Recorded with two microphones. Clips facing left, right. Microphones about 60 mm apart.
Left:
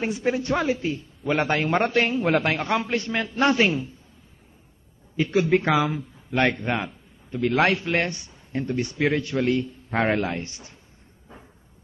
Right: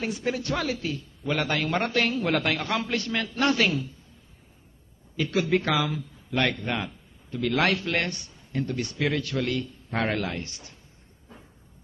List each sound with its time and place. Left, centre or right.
0.0 s speech: left
5.1 s speech: left